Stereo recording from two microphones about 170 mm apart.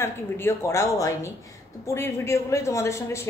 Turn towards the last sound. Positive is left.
turn(degrees=15)  # may be behind; listen again after turning